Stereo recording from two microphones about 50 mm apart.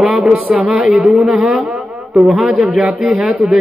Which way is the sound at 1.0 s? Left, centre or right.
Centre.